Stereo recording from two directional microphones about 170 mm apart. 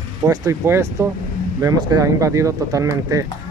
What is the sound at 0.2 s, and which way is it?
Speech, 20° right (ahead or behind).